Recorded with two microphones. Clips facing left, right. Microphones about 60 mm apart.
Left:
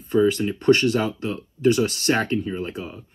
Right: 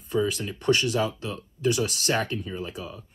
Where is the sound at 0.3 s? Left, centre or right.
Left.